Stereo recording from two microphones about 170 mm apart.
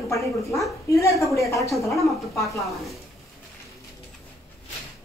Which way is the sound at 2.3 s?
20° left (ahead or behind).